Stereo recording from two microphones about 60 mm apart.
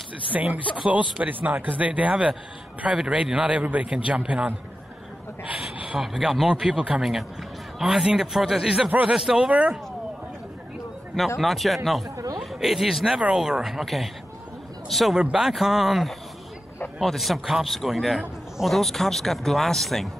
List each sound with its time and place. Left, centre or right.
0.3 s speech: right
5.5 s a sound: centre
5.9 s speech: centre
11.4 s speech: centre